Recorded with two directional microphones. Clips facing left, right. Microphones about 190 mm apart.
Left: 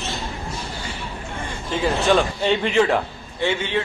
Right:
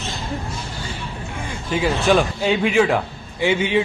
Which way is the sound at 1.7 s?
5° right (ahead or behind).